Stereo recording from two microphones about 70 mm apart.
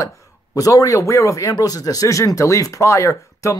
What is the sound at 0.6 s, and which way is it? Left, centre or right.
Speech, left.